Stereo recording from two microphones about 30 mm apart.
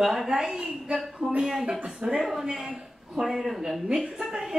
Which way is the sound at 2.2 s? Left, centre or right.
Centre.